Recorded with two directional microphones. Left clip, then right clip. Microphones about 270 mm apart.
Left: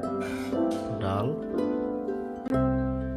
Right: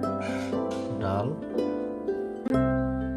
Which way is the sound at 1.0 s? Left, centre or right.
Centre.